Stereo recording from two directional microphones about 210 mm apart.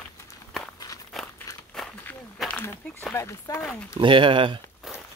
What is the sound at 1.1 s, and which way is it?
Crumpling, centre (ahead or behind).